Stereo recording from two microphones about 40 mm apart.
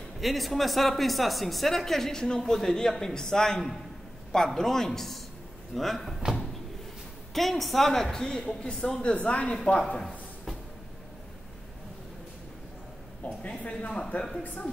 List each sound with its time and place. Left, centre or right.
0.2 s a woman's voice: centre
7.3 s a woman's voice: centre; by 10.0 s left
13.2 s a man's voice: left; by 14.4 s centre